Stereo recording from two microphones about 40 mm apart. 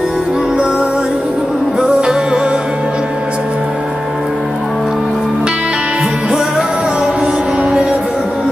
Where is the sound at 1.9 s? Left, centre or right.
Centre.